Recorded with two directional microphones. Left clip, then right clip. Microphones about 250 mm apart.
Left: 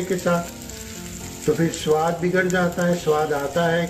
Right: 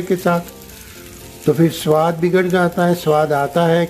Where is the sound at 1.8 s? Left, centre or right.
Right.